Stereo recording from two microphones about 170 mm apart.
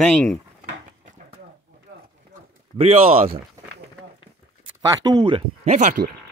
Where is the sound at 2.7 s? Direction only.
35° right (ahead or behind).